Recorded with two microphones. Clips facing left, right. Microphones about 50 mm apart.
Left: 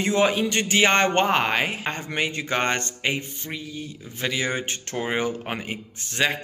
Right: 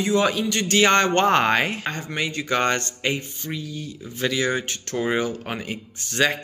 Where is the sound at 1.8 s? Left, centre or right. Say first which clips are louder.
Even; left.